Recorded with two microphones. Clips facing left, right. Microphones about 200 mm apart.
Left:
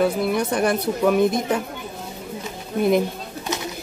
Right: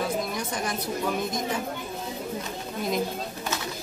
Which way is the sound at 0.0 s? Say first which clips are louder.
Left 9 dB; 65° left (ahead or behind).